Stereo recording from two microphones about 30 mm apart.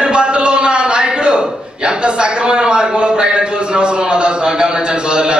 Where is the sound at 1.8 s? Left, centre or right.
Right.